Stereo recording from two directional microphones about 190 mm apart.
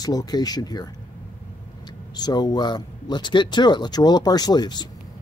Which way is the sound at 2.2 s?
20° left (ahead or behind).